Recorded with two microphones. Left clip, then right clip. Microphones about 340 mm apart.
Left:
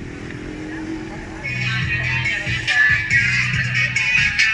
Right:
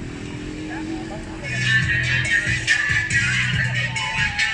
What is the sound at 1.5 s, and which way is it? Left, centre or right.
Music, right.